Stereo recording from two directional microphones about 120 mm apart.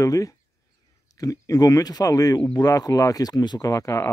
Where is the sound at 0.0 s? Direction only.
30° left (ahead or behind).